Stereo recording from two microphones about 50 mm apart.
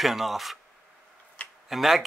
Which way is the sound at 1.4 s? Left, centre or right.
Left.